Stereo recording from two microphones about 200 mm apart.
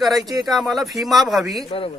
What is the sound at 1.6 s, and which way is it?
Speech, 30° left (ahead or behind).